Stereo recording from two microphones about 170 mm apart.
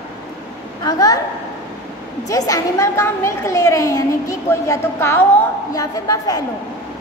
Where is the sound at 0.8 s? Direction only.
20° left (ahead or behind).